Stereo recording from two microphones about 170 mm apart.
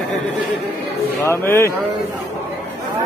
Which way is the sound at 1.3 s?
15° left (ahead or behind).